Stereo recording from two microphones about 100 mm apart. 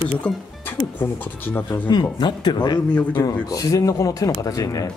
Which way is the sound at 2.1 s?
45° left (ahead or behind).